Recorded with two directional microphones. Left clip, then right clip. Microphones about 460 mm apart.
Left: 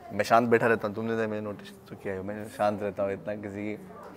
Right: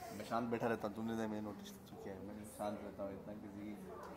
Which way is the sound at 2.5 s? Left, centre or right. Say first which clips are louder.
Left 17 dB; left.